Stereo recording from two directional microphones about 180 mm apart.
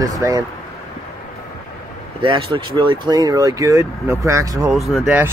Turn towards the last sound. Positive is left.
turn(degrees=0)  # may be behind; listen again after turning